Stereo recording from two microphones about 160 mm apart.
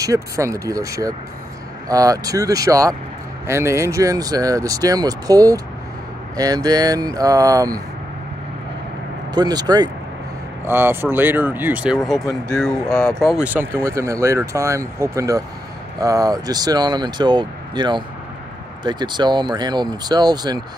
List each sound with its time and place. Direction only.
0.0 s speech: 20° right (ahead or behind)
9.3 s speech: 25° right (ahead or behind)
10.7 s speech: 15° right (ahead or behind)